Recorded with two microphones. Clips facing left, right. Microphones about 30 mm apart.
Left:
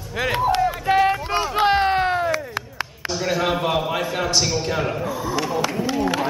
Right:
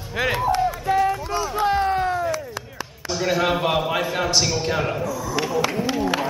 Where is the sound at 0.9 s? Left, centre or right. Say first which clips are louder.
Left 4 dB; left.